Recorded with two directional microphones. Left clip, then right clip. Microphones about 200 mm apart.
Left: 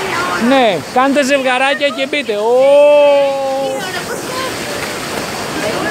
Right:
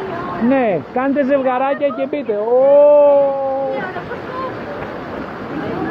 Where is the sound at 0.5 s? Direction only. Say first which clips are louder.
Left 3 dB; 25° left (ahead or behind); by 3.2 s 40° left (ahead or behind).